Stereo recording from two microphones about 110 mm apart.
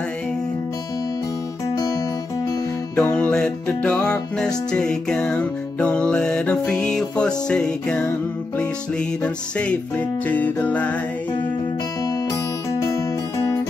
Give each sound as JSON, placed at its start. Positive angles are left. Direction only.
{"t": 3.0, "sound": "music", "side_deg": 15}
{"t": 8.0, "sound": "music", "side_deg": 20}